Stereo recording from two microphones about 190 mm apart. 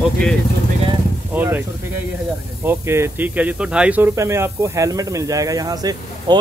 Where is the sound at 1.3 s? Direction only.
10° right (ahead or behind).